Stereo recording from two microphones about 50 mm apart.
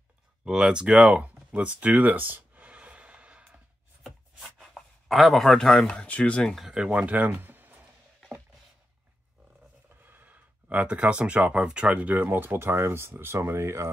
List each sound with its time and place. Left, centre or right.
0.5 s speech: centre
1.0 s a sound: right
4.0 s writing: centre
5.9 s speech: left
6.6 s speech: centre; by 7.8 s right
10.0 s a sound: right
11.6 s speech: right